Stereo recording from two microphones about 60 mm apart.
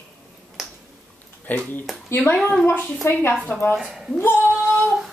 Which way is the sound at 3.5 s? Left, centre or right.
Left.